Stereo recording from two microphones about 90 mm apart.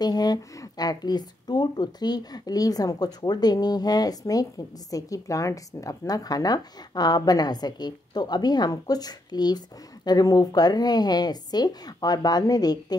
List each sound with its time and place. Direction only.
0.0 s a woman's voice: 50° left (ahead or behind)